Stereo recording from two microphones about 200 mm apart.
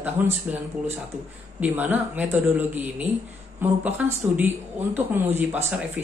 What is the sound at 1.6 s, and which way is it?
A woman's voice, 10° right (ahead or behind).